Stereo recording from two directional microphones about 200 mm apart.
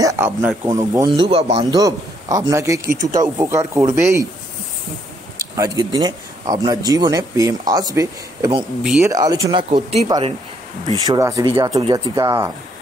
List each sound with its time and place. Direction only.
0.0 s speech: 15° right (ahead or behind)
2.9 s speech: 40° right (ahead or behind)
3.2 s speech: 15° right (ahead or behind)
5.6 s speech: 20° right (ahead or behind)
8.8 s speech: 5° right (ahead or behind)
9.1 s speech: 20° right (ahead or behind)
11.1 s speech: 15° right (ahead or behind)